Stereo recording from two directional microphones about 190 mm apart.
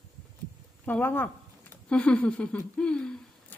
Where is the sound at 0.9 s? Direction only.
10° left (ahead or behind).